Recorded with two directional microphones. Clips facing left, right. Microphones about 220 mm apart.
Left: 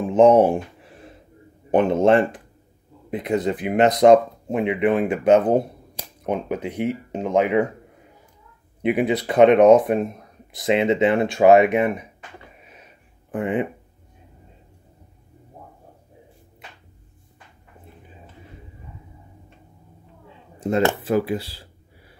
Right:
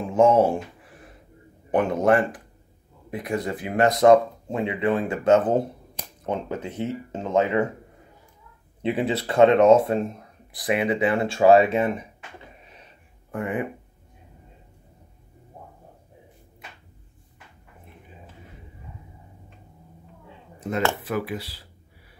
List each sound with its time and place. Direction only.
0.1 s a sound: 20° left (ahead or behind)
1.7 s speech: 25° left (ahead or behind)
8.8 s speech: 15° left (ahead or behind)
13.3 s speech: 20° left (ahead or behind)
20.8 s speech: 30° left (ahead or behind)